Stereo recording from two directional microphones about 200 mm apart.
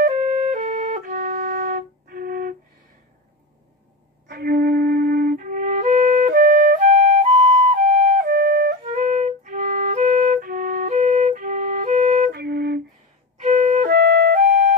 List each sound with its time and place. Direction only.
0.0 s flute: 35° right (ahead or behind)
4.3 s flute: 50° right (ahead or behind); by 12.3 s 35° right (ahead or behind)
12.3 s flute: 50° right (ahead or behind)
13.4 s flute: 35° right (ahead or behind)
13.8 s flute: 60° right (ahead or behind)
14.3 s flute: 40° right (ahead or behind)